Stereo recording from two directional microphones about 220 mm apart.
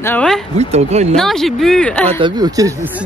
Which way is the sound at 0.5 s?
30° right (ahead or behind).